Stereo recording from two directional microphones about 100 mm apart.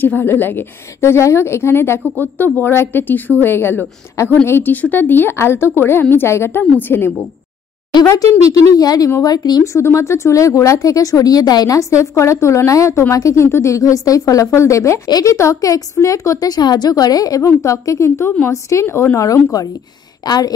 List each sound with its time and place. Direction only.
0.0 s a woman's voice: 20° left (ahead or behind)
8.5 s a woman's voice: 40° left (ahead or behind)
20.2 s a woman's voice: 45° left (ahead or behind)